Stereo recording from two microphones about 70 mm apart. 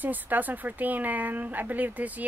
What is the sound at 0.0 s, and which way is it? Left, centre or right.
Speech, right.